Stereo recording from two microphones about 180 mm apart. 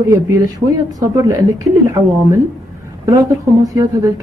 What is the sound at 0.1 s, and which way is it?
Speech, 20° right (ahead or behind).